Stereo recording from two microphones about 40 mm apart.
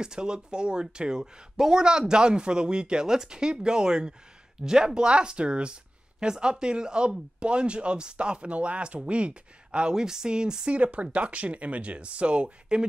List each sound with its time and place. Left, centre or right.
0.0 s speech: centre
10.7 s speech: right